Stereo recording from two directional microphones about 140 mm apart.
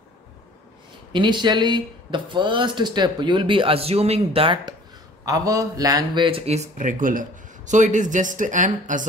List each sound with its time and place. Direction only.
1.1 s speech: 35° right (ahead or behind)
5.2 s a man's voice: 25° right (ahead or behind); by 9.0 s 65° right (ahead or behind)